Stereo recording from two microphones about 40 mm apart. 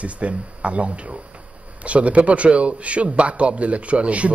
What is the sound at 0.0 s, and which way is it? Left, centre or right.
A man's voice, right.